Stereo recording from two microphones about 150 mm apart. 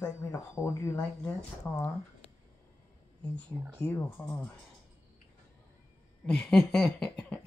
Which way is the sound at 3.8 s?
10° left (ahead or behind).